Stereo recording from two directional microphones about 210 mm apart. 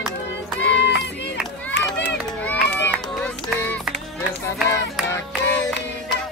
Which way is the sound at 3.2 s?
5° left (ahead or behind).